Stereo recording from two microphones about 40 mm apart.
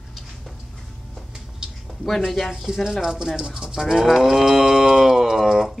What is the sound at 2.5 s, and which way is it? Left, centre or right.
Speech, centre.